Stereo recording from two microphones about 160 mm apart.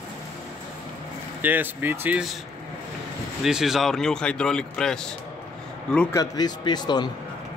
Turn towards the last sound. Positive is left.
turn(degrees=25)  # may be behind; listen again after turning